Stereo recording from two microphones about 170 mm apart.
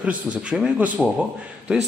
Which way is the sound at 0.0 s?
10° right (ahead or behind).